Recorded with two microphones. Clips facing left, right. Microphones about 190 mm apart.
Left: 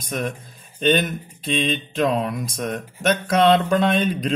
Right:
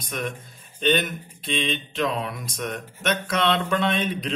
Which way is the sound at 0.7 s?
40° left (ahead or behind).